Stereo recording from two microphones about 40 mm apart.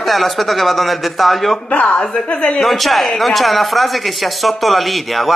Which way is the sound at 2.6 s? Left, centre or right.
Centre.